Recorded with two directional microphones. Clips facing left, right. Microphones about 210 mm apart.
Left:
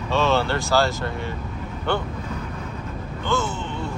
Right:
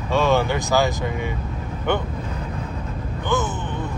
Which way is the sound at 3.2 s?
15° right (ahead or behind).